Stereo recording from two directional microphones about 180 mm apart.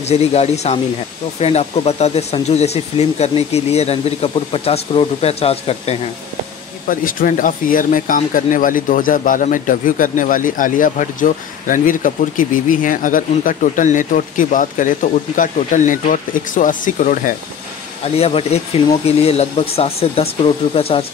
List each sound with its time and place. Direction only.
0.0 s speech: 35° left (ahead or behind)
6.9 s speech: 50° left (ahead or behind)
18.0 s speech: 35° left (ahead or behind)